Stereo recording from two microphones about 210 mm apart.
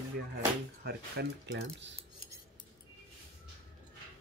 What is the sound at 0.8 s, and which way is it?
Speech, 50° right (ahead or behind).